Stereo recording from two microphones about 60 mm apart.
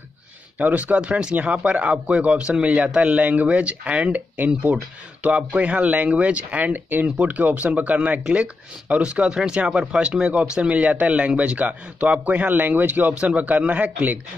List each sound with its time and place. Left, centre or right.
0.6 s speech: right
13.1 s speech: centre